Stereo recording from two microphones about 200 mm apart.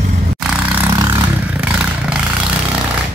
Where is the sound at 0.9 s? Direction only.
20° right (ahead or behind).